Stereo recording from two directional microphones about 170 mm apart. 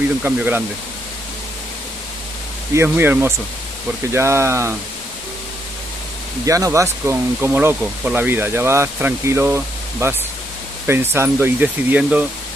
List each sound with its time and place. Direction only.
0.2 s speech: 10° right (ahead or behind)
2.7 s speech: 15° right (ahead or behind)
6.4 s speech: 20° right (ahead or behind)
11.1 s speech: 10° right (ahead or behind)